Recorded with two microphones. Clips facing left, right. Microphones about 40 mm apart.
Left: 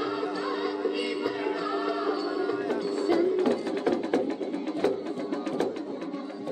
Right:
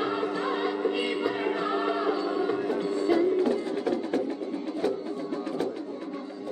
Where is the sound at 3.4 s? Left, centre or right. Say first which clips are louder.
Left 1 dB; left.